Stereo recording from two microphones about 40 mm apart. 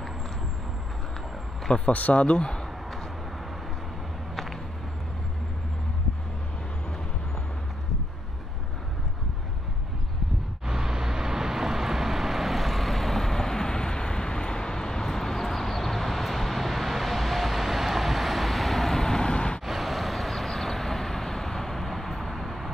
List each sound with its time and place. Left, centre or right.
1.9 s speech: left
10.7 s vehicle: centre; by 19.6 s left
19.6 s vehicle: centre